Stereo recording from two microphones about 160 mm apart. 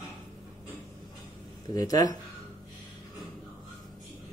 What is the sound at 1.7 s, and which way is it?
Speech, 25° left (ahead or behind).